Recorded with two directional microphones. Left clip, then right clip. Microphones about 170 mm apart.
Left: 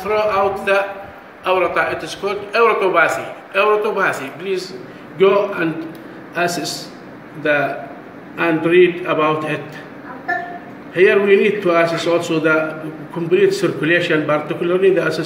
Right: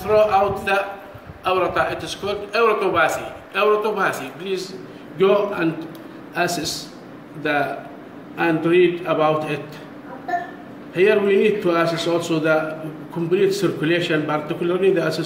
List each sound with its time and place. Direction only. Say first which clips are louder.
0.0 s a man's voice: even; 30° right (ahead or behind)
8.4 s a man's voice: left 4 dB; 30° right (ahead or behind)
11.0 s a man's voice: left 4 dB; 30° right (ahead or behind)